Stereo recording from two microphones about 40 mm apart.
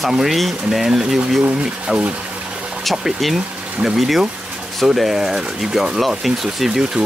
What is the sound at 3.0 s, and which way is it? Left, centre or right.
Speech, centre.